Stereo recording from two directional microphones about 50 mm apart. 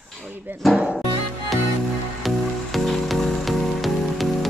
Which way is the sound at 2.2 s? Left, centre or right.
Centre.